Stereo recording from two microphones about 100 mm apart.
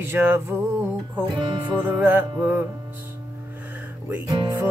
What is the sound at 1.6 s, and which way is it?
Music, 20° right (ahead or behind).